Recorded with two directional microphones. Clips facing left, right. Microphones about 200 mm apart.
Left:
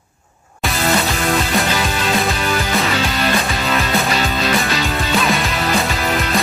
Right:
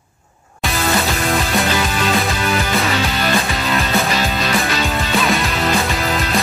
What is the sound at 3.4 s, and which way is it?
Music, centre (ahead or behind).